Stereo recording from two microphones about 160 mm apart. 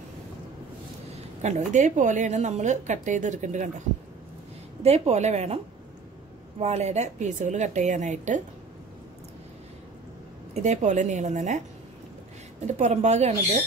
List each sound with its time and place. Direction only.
1.4 s a woman's voice: 45° right (ahead or behind)
4.8 s a woman's voice: 40° right (ahead or behind)
6.6 s a woman's voice: 45° right (ahead or behind)
10.5 s a woman's voice: 45° right (ahead or behind)